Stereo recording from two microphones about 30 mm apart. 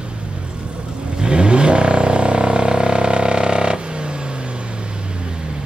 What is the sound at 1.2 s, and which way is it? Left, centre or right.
Vehicle, right.